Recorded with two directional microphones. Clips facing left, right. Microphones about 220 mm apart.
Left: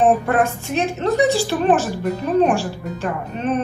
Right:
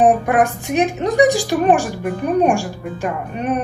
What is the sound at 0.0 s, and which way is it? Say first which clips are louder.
A woman's voice: right 2 dB; 15° right (ahead or behind).